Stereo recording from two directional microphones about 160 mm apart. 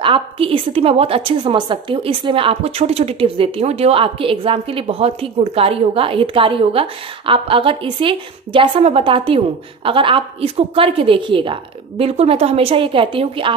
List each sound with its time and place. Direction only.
0.0 s a woman's voice: 35° right (ahead or behind)